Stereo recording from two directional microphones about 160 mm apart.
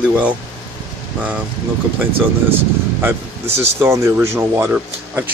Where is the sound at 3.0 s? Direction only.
15° right (ahead or behind).